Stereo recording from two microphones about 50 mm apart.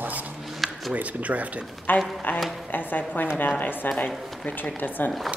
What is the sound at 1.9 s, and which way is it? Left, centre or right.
A woman's voice, left.